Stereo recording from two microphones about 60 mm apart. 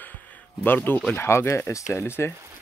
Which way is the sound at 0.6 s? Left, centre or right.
Left.